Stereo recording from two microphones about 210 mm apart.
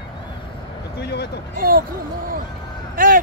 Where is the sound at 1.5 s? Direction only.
45° right (ahead or behind).